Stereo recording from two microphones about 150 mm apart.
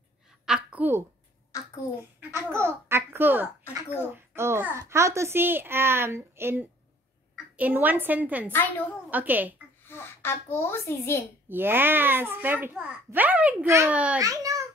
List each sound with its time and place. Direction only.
0.5 s a sound: 5° right (ahead or behind)
1.5 s a sound: 20° left (ahead or behind)
2.1 s a child's voice: 15° right (ahead or behind)
8.5 s a child's voice: 10° left (ahead or behind)
9.1 s a child's voice: 10° right (ahead or behind)
9.8 s a child's voice: 15° left (ahead or behind)
11.4 s a child's voice: 15° right (ahead or behind)
14.2 s a child's voice: 25° right (ahead or behind)